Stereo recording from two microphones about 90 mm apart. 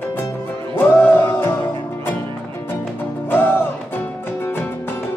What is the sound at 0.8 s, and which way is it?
Music, 25° left (ahead or behind).